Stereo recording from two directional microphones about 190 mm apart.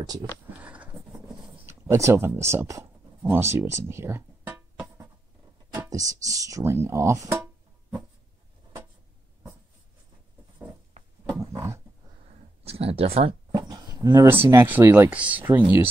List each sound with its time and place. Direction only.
0.6 s sniff: 5° right (ahead or behind)
1.7 s speech: 15° right (ahead or behind)
3.7 s music: 15° right (ahead or behind)
5.8 s speech: 15° right (ahead or behind)
11.3 s a sound: 15° right (ahead or behind)
12.6 s speech: 30° right (ahead or behind); by 15.9 s 10° right (ahead or behind)